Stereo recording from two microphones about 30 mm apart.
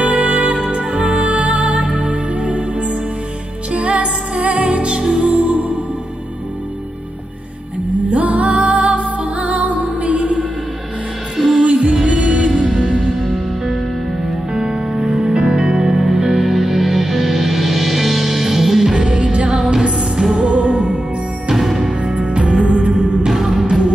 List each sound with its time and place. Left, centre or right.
0.0 s music: right
3.7 s music: right
8.1 s music: right
11.3 s music: centre
11.6 s music: right
14.5 s music: right
16.3 s music: centre; by 20.4 s right
20.4 s music: right
22.3 s music: right
23.2 s music: centre